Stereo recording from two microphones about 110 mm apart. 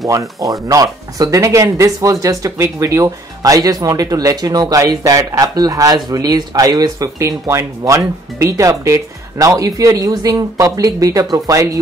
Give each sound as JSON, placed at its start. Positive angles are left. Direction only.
{"t": 0.0, "sound": "speech", "side_deg": -30}